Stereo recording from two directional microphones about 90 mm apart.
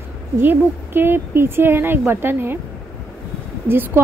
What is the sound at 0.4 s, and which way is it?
A woman's voice, 25° right (ahead or behind).